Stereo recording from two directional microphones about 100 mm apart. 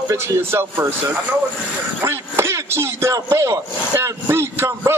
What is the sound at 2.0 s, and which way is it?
Speech, 25° right (ahead or behind).